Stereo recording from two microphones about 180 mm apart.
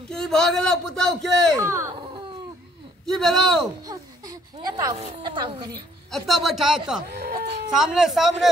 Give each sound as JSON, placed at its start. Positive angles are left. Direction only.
{"t": 0.1, "sound": "a man's voice", "side_deg": 5}
{"t": 1.6, "sound": "speech", "side_deg": -15}
{"t": 3.1, "sound": "a man's voice", "side_deg": 0}
{"t": 3.8, "sound": "speech", "side_deg": -20}
{"t": 6.0, "sound": "a man's voice", "side_deg": 0}
{"t": 7.1, "sound": "speech", "side_deg": -60}
{"t": 7.7, "sound": "a man's voice", "side_deg": 0}